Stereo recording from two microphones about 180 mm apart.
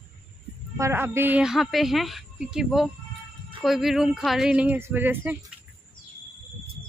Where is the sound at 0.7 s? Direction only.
15° right (ahead or behind).